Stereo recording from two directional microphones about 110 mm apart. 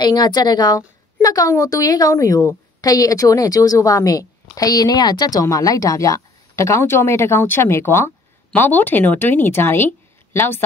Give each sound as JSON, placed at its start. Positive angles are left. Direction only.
{"t": 0.0, "sound": "a woman's voice", "side_deg": 40}